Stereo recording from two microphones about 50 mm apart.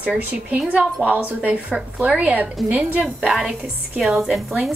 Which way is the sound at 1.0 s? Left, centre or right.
Right.